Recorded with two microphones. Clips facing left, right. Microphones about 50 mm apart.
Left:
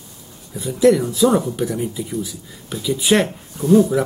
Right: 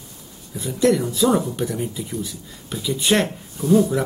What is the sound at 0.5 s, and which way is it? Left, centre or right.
Speech, centre.